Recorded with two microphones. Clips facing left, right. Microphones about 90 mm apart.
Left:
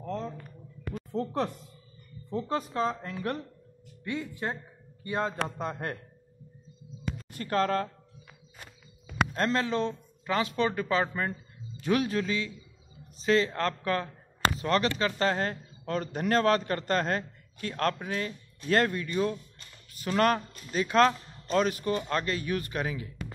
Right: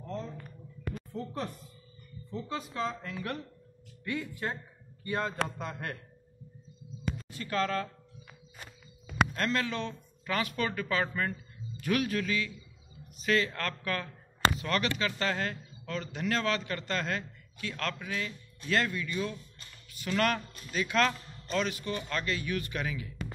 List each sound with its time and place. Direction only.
0.0 s a sound: 90° left
1.1 s speech: 90° left
2.2 s a woman's voice: 50° left (ahead or behind)
2.7 s a man's voice: 35° left (ahead or behind)
4.0 s a man's voice: 25° left (ahead or behind)
5.6 s a man's voice: 35° left (ahead or behind)
7.2 s speech: 45° left (ahead or behind)
9.3 s a man's voice: 30° left (ahead or behind)